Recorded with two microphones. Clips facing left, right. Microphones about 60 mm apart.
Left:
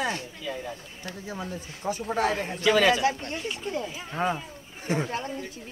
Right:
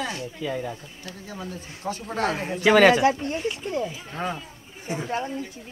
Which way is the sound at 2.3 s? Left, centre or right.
Centre.